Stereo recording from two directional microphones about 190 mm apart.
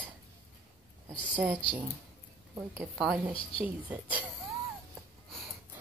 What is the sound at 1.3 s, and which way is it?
Speech, 10° right (ahead or behind).